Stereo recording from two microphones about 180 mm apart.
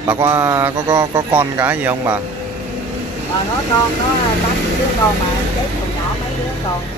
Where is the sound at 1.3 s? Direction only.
10° right (ahead or behind).